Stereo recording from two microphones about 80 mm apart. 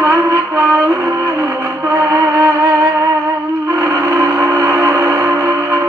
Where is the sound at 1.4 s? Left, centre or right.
Right.